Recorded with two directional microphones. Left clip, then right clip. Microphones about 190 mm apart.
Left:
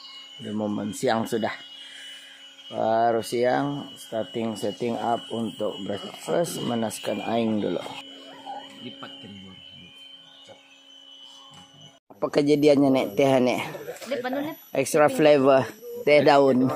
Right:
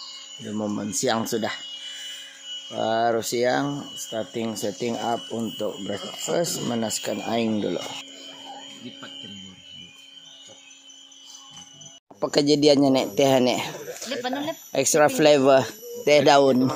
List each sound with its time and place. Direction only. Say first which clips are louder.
0.5 s speech: even; 10° right (ahead or behind)
2.7 s speech: left 1 dB; 10° right (ahead or behind)
12.2 s speech: right 1 dB; 15° right (ahead or behind)
14.0 s speech: even; 55° right (ahead or behind)
14.7 s speech: right 1 dB; 15° right (ahead or behind)